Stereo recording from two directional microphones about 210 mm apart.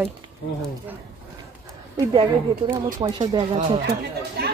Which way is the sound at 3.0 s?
20° right (ahead or behind).